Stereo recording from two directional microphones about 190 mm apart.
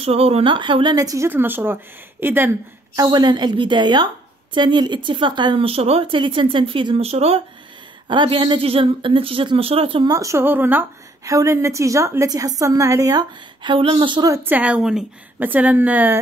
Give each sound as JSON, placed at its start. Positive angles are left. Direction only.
{"t": 0.0, "sound": "a woman's voice", "side_deg": -30}
{"t": 3.0, "sound": "a woman's voice", "side_deg": -20}